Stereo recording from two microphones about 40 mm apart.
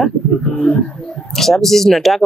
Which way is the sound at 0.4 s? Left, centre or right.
Left.